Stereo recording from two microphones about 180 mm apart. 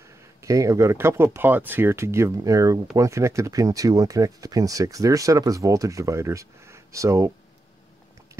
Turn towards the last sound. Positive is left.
turn(degrees=-15)  # may be behind; listen again after turning